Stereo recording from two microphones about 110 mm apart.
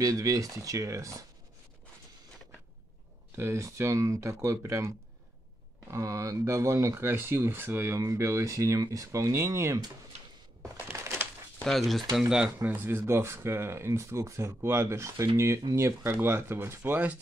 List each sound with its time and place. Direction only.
0.0 s speech: 30° right (ahead or behind)
3.3 s speech: 25° right (ahead or behind)
10.6 s a sound: 25° right (ahead or behind)
11.6 s speech: centre (ahead or behind)
12.5 s speech: 20° right (ahead or behind)